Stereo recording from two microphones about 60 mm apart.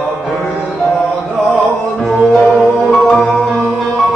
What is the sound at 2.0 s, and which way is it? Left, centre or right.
Music, centre.